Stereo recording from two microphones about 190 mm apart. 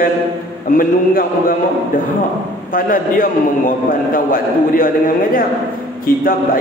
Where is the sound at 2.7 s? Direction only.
45° left (ahead or behind).